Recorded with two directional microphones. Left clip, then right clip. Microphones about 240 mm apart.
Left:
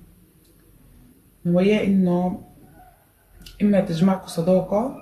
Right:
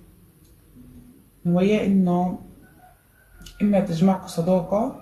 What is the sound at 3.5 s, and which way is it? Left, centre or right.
Speech, centre.